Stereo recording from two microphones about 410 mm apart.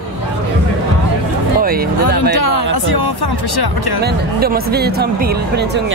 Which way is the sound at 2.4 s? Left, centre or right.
Left.